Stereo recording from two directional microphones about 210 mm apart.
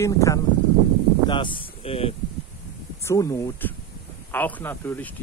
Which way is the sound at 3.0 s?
15° left (ahead or behind).